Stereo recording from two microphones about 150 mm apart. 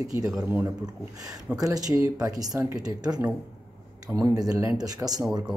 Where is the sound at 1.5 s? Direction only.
25° right (ahead or behind).